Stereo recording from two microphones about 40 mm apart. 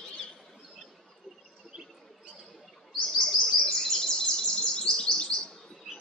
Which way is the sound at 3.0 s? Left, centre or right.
Left.